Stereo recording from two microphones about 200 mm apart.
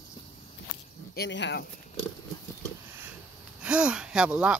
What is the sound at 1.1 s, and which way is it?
Speech, 60° left (ahead or behind).